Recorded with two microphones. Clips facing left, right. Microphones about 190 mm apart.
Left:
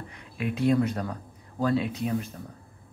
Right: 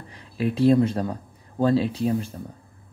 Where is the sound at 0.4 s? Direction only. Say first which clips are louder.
Right 5 dB; 30° right (ahead or behind).